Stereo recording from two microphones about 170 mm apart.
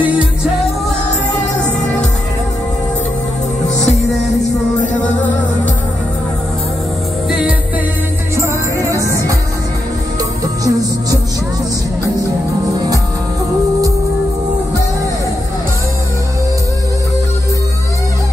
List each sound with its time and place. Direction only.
7.2 s music: 5° right (ahead or behind)
8.4 s music: 20° right (ahead or behind)
10.4 s music: 20° right (ahead or behind)